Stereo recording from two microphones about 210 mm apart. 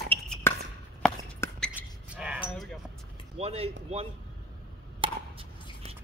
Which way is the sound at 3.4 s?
30° right (ahead or behind).